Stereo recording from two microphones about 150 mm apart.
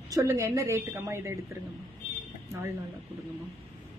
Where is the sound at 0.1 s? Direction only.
20° right (ahead or behind).